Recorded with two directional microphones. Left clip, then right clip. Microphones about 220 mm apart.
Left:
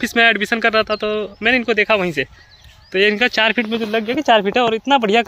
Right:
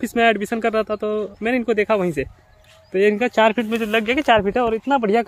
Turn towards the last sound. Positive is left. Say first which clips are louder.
# left 4 dB
turn(degrees=0)  # may be behind; listen again after turning